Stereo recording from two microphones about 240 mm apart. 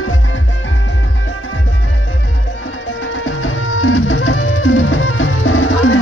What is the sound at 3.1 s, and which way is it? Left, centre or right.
Music, left.